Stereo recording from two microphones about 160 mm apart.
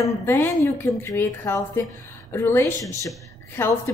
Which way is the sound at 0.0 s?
15° left (ahead or behind).